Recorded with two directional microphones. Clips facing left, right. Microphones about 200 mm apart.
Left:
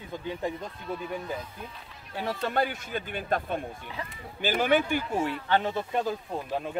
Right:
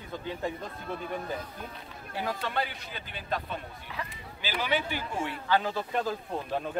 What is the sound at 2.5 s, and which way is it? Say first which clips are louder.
A man's voice: left 6 dB; 50° left (ahead or behind).